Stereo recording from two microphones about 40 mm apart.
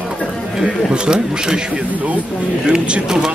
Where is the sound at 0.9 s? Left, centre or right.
Right.